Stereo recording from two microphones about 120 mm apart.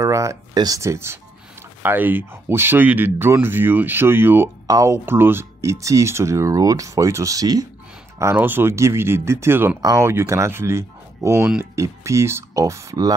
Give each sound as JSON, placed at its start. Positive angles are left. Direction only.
{"t": 0.0, "sound": "speech", "side_deg": -25}
{"t": 8.2, "sound": "speech", "side_deg": -20}